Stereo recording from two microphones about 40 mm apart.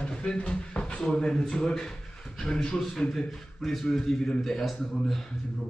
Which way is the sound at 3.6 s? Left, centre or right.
Centre.